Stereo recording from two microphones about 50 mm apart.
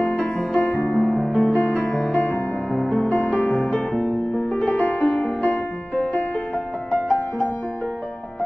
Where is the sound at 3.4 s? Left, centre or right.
Left.